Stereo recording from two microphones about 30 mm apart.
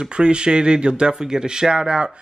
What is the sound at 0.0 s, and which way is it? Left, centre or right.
Speech, right.